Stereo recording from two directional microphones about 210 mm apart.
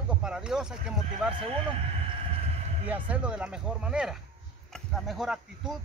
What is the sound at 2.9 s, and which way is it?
Speech, 5° right (ahead or behind).